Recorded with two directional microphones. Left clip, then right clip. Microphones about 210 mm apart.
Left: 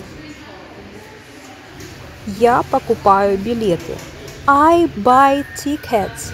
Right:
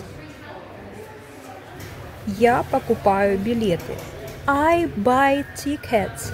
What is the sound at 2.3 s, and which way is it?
A woman's voice, 15° left (ahead or behind).